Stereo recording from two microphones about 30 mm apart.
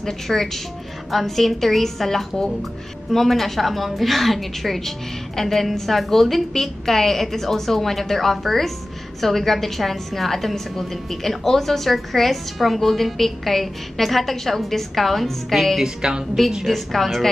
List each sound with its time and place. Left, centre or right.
0.0 s a woman's voice: centre
15.8 s a woman's voice: right
16.6 s a woman's voice: centre